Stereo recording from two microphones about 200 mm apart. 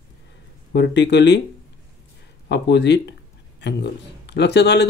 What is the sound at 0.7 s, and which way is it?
Speech, 60° left (ahead or behind).